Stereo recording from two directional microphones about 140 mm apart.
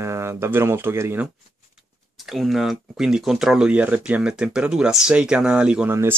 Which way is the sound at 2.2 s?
Centre (ahead or behind).